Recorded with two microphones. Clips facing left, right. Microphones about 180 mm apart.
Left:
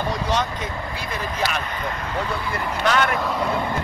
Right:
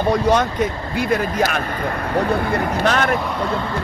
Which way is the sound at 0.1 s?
55° right (ahead or behind).